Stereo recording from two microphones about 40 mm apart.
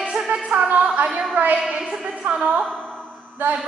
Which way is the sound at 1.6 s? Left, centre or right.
Centre.